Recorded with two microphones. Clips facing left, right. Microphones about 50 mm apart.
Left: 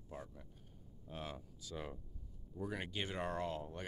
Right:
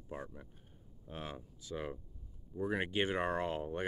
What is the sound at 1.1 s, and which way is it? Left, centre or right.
Speech, centre.